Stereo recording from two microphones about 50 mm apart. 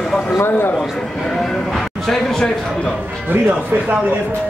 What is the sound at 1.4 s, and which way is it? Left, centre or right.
Speech, centre.